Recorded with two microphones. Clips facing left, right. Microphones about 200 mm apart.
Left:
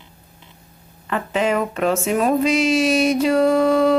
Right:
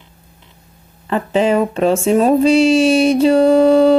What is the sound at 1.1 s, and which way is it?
Speech, 30° right (ahead or behind).